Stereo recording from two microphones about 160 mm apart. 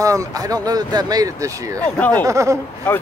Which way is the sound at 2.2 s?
20° right (ahead or behind).